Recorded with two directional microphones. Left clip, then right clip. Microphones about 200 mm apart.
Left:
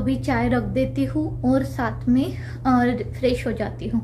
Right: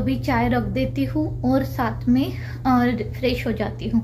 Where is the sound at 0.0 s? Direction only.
5° left (ahead or behind).